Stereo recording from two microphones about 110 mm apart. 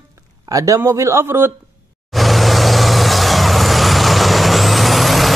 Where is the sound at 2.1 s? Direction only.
Centre (ahead or behind).